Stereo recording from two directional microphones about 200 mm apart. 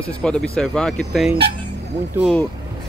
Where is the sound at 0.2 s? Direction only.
5° left (ahead or behind).